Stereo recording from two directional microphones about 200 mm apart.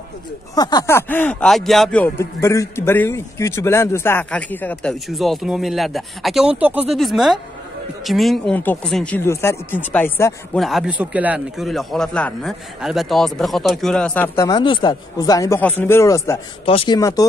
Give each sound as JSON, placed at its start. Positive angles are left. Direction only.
{"t": 0.6, "sound": "speech", "side_deg": 20}
{"t": 10.6, "sound": "a man's voice", "side_deg": 0}
{"t": 16.6, "sound": "speech", "side_deg": 25}